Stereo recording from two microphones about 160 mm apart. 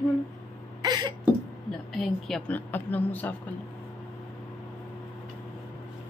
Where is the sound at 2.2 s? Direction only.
5° left (ahead or behind).